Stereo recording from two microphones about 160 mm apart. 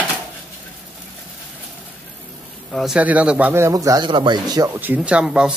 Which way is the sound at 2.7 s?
5° right (ahead or behind).